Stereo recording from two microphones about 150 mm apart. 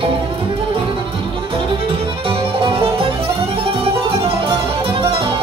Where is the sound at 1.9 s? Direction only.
40° right (ahead or behind).